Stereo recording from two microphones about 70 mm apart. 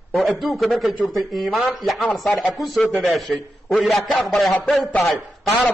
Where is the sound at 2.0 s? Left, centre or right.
Centre.